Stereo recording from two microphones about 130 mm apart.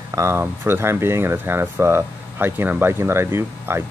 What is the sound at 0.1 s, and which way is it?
Speech, 20° right (ahead or behind).